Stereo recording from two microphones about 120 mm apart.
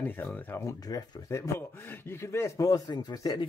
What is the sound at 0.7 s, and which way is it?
Speech, 30° left (ahead or behind).